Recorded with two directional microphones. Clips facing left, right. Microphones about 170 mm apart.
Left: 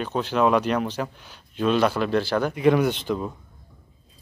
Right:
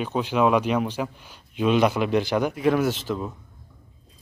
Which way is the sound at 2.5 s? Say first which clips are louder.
Left 5 dB; centre (ahead or behind).